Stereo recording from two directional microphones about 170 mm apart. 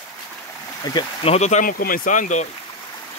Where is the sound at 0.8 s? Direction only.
25° left (ahead or behind).